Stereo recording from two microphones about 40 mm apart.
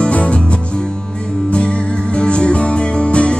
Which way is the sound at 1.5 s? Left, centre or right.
Left.